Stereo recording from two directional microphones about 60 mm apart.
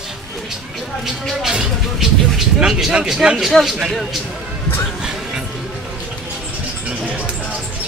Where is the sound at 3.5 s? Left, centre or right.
Centre.